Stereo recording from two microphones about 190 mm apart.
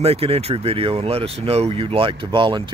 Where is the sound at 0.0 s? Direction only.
30° right (ahead or behind).